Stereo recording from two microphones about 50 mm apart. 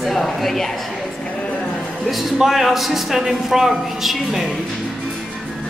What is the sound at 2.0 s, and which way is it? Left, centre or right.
A man's voice, centre.